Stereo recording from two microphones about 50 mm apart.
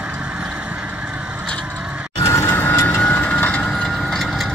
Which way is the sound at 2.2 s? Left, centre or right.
Left.